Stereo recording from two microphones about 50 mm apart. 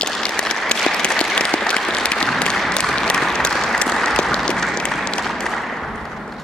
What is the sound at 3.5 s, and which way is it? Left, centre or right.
Applause, centre.